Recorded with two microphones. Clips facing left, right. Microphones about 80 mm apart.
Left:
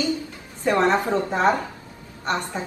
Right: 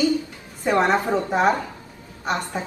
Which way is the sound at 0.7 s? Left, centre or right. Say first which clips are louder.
Even; centre.